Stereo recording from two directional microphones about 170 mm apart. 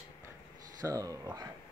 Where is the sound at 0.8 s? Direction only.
20° right (ahead or behind).